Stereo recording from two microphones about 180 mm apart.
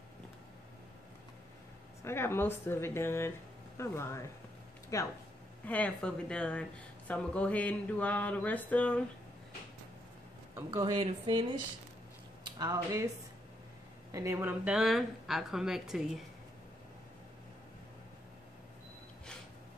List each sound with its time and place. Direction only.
2.0 s speech: 15° left (ahead or behind)
5.7 s speech: 5° left (ahead or behind)
10.5 s speech: 15° right (ahead or behind)
11.0 s speech: 30° right (ahead or behind)
12.4 s speech: 20° right (ahead or behind)
14.1 s a woman's voice: 15° right (ahead or behind)